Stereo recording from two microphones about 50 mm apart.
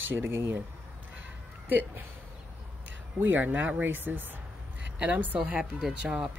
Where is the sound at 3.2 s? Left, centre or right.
Right.